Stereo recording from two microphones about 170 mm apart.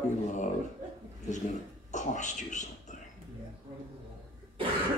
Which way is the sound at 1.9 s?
45° left (ahead or behind).